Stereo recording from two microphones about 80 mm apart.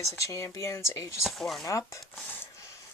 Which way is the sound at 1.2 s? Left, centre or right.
Centre.